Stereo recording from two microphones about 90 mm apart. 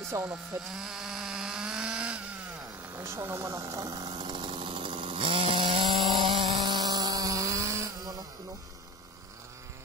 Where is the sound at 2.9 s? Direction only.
30° right (ahead or behind); by 5.9 s 65° right (ahead or behind).